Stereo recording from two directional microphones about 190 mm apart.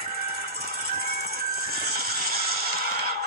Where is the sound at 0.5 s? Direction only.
55° right (ahead or behind).